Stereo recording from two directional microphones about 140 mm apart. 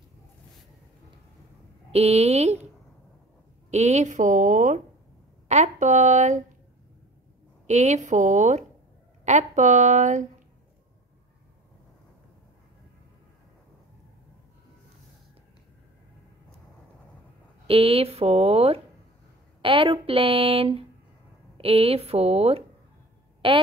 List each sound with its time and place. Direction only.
1.9 s speech: 50° right (ahead or behind)
3.7 s a woman's voice: 50° right (ahead or behind)
7.6 s a woman's voice: 55° right (ahead or behind)
17.6 s speech: 45° right (ahead or behind)
19.6 s a woman's voice: 35° right (ahead or behind)